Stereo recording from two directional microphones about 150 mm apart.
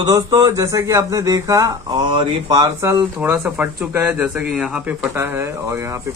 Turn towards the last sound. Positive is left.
turn(degrees=-15)  # may be behind; listen again after turning